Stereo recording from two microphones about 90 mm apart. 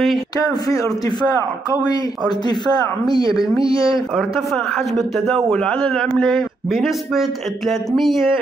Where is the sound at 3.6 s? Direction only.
70° right (ahead or behind).